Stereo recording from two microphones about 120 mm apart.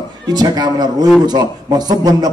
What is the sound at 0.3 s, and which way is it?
A man's voice, 35° right (ahead or behind).